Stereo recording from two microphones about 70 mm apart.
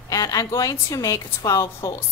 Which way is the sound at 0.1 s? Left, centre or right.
Left.